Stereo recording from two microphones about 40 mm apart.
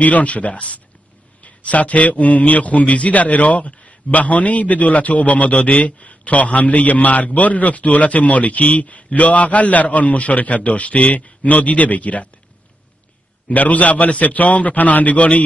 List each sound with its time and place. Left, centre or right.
0.0 s a man's voice: left
13.5 s a man's voice: left